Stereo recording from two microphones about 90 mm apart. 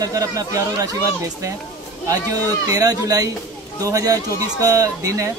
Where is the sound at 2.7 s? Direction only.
40° right (ahead or behind).